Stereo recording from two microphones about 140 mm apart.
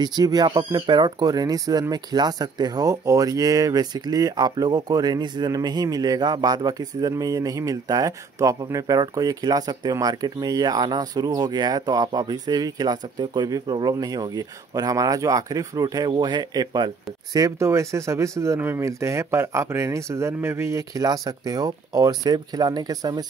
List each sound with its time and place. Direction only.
0.0 s speech: 30° right (ahead or behind)